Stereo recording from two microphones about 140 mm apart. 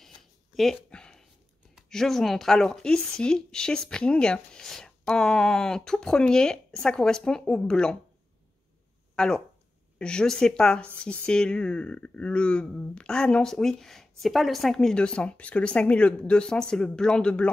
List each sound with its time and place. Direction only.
0.6 s a sound: 5° left (ahead or behind)
1.8 s speech: centre (ahead or behind)
9.1 s speech: 5° left (ahead or behind)